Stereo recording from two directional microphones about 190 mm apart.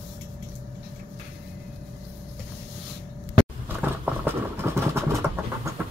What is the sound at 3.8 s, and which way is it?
Vehicle, 10° right (ahead or behind).